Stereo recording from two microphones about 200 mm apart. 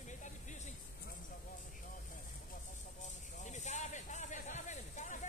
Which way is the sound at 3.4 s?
35° left (ahead or behind).